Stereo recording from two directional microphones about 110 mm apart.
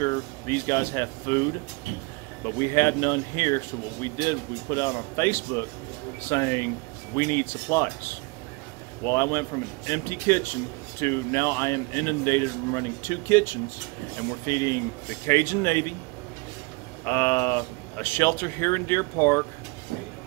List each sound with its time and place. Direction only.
0.0 s speech: 25° left (ahead or behind)
2.6 s speech: 25° left (ahead or behind)
17.0 s speech: 20° left (ahead or behind)